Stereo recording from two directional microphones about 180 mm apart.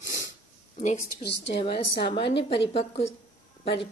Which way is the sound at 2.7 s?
35° left (ahead or behind).